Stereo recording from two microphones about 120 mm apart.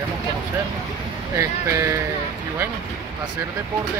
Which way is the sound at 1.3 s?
25° right (ahead or behind).